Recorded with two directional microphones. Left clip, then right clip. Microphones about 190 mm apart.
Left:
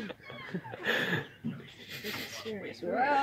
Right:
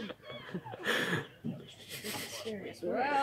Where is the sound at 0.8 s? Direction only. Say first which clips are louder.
Left 2 dB; 5° right (ahead or behind).